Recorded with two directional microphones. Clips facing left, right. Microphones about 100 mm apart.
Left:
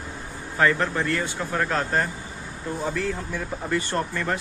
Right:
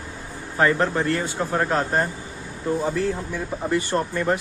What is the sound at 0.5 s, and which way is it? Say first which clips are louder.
Speech: right 2 dB; 30° right (ahead or behind).